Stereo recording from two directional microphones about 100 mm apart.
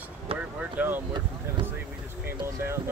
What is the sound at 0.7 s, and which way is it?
Speech, 20° right (ahead or behind).